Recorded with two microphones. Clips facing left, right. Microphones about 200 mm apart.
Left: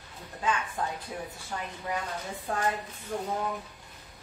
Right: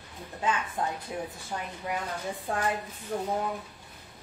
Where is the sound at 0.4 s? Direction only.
20° right (ahead or behind).